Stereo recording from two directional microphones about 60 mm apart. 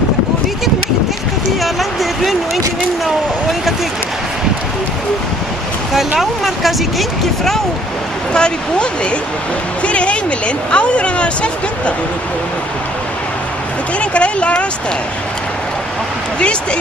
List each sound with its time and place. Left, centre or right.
1.6 s a sound: centre
5.9 s speech: centre
8.3 s speech: centre
9.8 s speech: centre
13.9 s speech: centre